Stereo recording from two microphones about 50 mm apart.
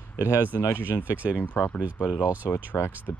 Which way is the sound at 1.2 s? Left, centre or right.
Right.